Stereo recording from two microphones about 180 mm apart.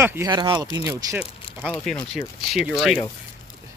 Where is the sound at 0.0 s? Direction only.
15° right (ahead or behind).